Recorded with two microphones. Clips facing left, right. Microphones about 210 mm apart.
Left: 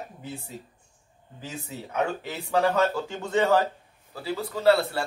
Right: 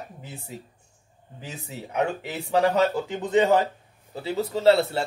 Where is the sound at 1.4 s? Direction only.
15° right (ahead or behind).